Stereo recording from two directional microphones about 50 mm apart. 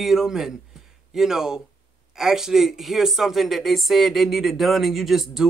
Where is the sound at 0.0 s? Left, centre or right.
Centre.